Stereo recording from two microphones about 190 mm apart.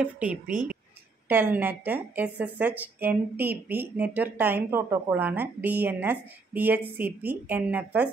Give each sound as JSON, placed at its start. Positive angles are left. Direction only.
{"t": 0.0, "sound": "speech", "side_deg": -5}
{"t": 0.5, "sound": "speech", "side_deg": -45}
{"t": 1.3, "sound": "speech", "side_deg": -10}